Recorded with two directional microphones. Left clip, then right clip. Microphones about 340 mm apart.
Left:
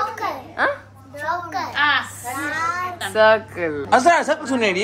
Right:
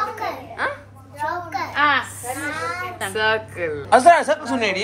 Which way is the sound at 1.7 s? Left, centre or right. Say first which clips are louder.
Right 1 dB; centre.